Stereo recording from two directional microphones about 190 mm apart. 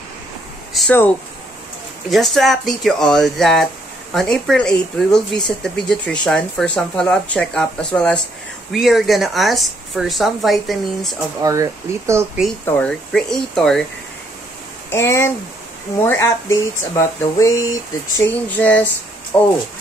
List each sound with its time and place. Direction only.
0.7 s speech: 5° left (ahead or behind)
11.4 s speech: 15° right (ahead or behind)
12.6 s speech: 5° left (ahead or behind)
14.9 s speech: 15° left (ahead or behind)